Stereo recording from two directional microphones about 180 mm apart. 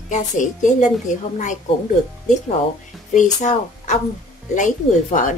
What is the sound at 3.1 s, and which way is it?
A woman's voice, 40° left (ahead or behind).